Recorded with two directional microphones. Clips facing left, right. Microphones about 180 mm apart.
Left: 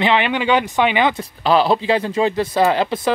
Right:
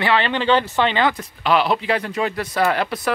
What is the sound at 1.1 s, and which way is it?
Speech, 35° left (ahead or behind).